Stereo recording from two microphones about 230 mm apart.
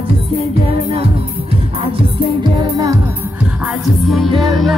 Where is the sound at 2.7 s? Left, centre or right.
Centre.